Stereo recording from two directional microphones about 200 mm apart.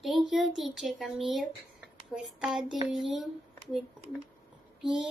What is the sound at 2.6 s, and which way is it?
Child singing, 20° right (ahead or behind).